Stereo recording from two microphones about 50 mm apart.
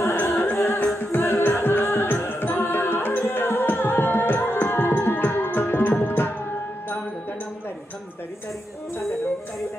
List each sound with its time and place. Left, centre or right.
0.0 s music: left